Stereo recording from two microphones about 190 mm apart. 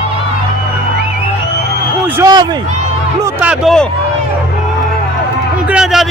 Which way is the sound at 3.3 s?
5° right (ahead or behind).